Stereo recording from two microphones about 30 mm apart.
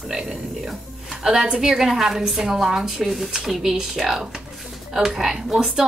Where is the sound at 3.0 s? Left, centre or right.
Centre.